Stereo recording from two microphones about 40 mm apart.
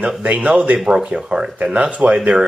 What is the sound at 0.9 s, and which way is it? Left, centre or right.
Speech, centre.